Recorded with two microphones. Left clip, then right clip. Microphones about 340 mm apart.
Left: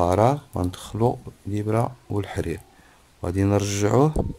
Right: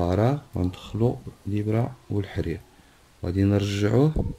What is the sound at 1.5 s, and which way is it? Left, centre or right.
Speech, centre.